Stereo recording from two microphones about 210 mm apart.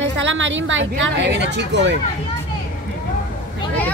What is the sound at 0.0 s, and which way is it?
A woman's voice, 60° right (ahead or behind).